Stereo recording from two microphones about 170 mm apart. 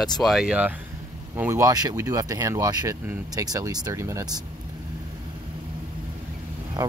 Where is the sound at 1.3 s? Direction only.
15° right (ahead or behind).